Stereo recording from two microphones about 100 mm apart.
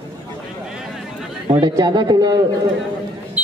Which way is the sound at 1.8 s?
45° right (ahead or behind).